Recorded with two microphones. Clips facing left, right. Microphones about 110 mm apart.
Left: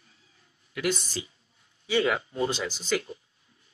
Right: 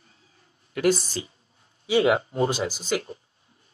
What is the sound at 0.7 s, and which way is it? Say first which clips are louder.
Speech: right 7 dB; 40° right (ahead or behind).